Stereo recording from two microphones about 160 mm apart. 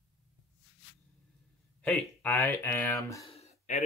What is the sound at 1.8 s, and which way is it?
Speech, 10° left (ahead or behind).